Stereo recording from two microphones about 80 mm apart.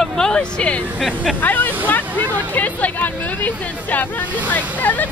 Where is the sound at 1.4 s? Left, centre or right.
Left.